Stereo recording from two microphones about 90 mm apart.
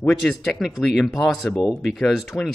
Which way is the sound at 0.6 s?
Centre (ahead or behind).